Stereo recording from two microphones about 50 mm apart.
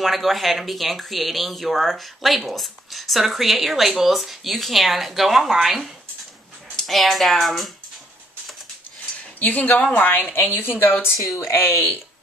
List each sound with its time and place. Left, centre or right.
0.0 s speech: centre
6.8 s speech: centre
9.4 s a woman's voice: left